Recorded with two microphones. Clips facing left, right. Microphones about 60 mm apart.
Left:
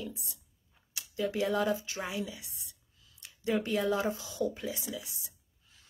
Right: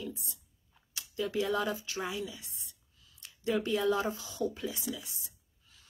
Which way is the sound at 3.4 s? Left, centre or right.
Left.